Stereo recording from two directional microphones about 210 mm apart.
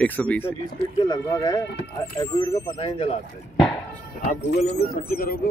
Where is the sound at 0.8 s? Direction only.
20° left (ahead or behind).